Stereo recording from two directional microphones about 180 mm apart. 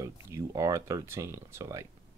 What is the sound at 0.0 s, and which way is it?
Speech, 20° right (ahead or behind).